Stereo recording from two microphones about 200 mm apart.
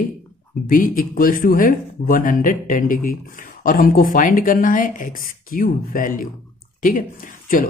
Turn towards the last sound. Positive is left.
turn(degrees=45)  # may be behind; listen again after turning